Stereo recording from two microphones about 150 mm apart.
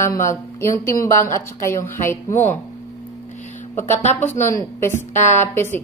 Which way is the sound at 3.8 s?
15° left (ahead or behind).